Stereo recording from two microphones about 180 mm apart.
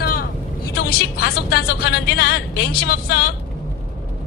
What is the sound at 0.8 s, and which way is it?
A woman's voice, 55° left (ahead or behind).